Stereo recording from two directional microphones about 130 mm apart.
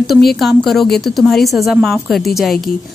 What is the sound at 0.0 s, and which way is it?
A woman's voice, centre (ahead or behind).